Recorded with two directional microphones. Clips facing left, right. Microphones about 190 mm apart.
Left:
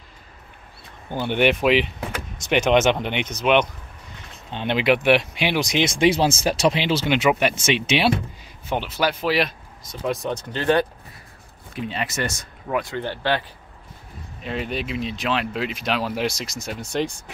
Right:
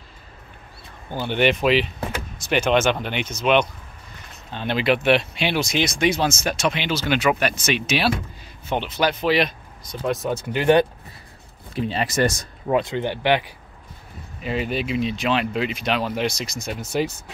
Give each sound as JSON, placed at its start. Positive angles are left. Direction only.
{"t": 1.2, "sound": "speech", "side_deg": 15}
{"t": 8.6, "sound": "speech", "side_deg": 5}
{"t": 11.7, "sound": "speech", "side_deg": -35}
{"t": 12.8, "sound": "speech", "side_deg": -15}
{"t": 14.4, "sound": "speech", "side_deg": 0}